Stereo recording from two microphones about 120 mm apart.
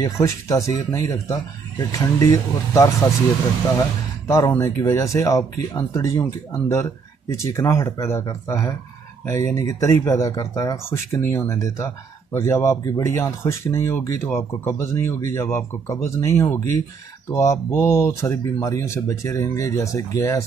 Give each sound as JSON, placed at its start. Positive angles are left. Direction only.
{"t": 0.0, "sound": "speech", "side_deg": 25}
{"t": 4.3, "sound": "speech", "side_deg": 25}